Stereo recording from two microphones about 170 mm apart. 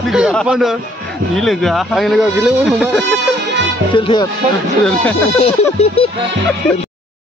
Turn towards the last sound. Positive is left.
turn(degrees=35)  # may be behind; listen again after turning